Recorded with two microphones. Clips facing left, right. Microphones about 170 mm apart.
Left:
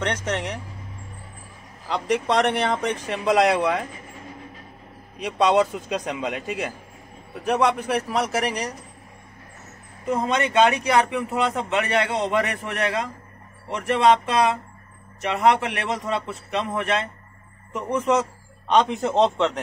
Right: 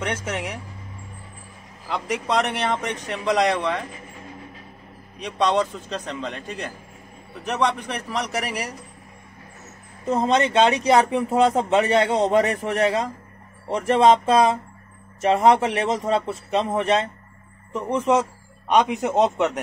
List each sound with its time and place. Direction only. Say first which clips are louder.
0.0 s a man's voice: left 1 dB; 10° right (ahead or behind)
1.9 s speech: left 2 dB; centre (ahead or behind)
5.2 s a man's voice: left 2 dB; 5° left (ahead or behind)
10.0 s speech: right 3 dB; 30° right (ahead or behind)
15.2 s speech: right 3 dB; 30° right (ahead or behind)
16.0 s a man's voice: right 4 dB; 45° right (ahead or behind)
16.4 s speech: right 3 dB; 30° right (ahead or behind)
17.9 s a man's voice: right 1 dB; 15° right (ahead or behind)